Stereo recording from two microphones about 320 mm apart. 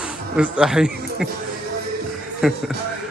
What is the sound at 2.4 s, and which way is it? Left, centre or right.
Speech, centre.